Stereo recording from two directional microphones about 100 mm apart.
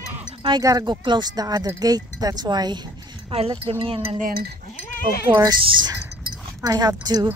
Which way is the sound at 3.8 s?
65° right (ahead or behind).